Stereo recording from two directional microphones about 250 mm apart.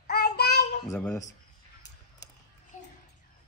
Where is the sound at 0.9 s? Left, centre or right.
Centre.